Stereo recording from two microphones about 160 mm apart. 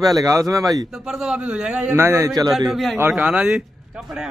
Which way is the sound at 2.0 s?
15° right (ahead or behind).